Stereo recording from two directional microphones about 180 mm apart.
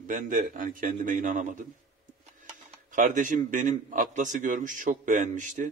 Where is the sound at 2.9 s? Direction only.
45° right (ahead or behind).